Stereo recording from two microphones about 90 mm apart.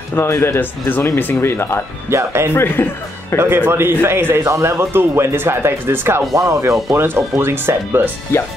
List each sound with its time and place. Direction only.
0.1 s speech: 30° left (ahead or behind)
2.0 s a man's voice: 30° right (ahead or behind)
2.5 s speech: 25° left (ahead or behind)
3.3 s a man's voice: 25° right (ahead or behind)
6.3 s a man's voice: 35° right (ahead or behind)